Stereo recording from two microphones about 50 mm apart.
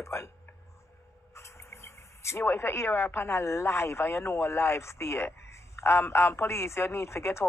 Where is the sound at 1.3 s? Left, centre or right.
Left.